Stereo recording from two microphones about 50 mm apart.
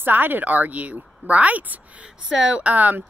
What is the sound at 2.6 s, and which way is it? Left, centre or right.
Speech, right.